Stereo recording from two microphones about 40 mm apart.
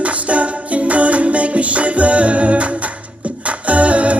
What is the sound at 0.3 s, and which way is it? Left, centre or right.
Music, right.